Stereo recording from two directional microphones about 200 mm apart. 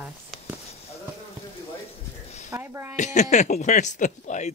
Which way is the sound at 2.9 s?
35° left (ahead or behind).